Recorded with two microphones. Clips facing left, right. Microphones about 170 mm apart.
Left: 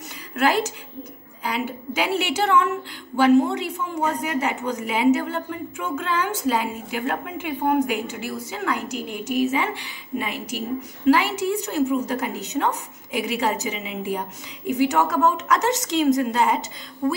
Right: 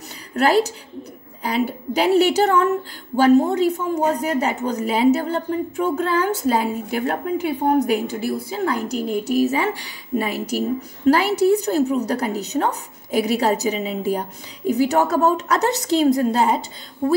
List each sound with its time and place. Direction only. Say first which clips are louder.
0.4 s a woman's voice: right 4 dB; 35° right (ahead or behind)